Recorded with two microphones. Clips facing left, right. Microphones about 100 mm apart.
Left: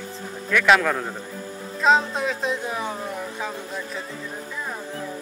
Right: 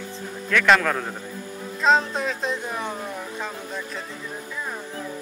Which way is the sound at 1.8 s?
Centre (ahead or behind).